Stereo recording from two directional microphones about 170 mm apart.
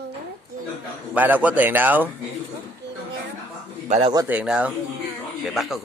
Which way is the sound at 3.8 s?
35° right (ahead or behind).